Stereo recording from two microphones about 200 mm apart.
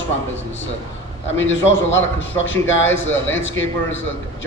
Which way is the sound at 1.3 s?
70° left (ahead or behind).